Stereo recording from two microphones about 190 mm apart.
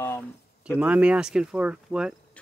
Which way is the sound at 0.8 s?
5° right (ahead or behind).